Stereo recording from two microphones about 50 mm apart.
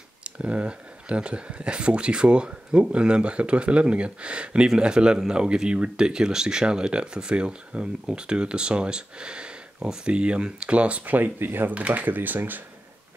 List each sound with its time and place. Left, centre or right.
0.2 s speech: right
11.7 s speech: right